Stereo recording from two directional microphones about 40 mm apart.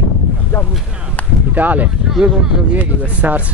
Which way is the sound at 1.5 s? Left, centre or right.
Right.